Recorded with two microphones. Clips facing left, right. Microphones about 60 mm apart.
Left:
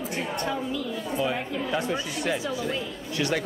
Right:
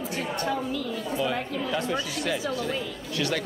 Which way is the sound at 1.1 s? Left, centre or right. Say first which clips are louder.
Even; centre.